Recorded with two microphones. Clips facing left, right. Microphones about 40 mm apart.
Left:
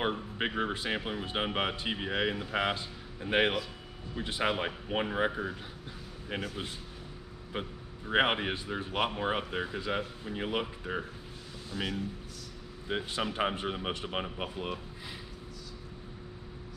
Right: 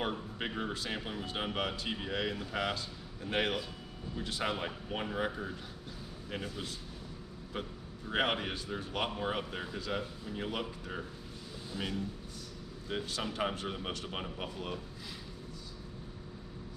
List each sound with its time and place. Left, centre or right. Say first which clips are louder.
0.0 s speech: left 4 dB; left
7.5 s speech: left 3 dB; left
11.7 s speech: left 3 dB; centre
12.8 s speech: left 4 dB; left